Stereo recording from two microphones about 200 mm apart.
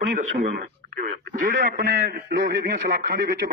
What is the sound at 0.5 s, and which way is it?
Speech, 40° right (ahead or behind).